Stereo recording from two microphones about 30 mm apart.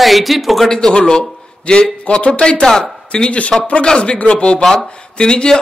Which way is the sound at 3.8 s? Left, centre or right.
Left.